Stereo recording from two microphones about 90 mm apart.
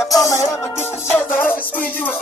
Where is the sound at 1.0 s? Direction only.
25° left (ahead or behind).